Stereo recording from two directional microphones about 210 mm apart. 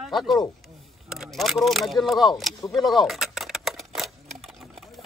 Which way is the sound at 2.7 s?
Centre (ahead or behind).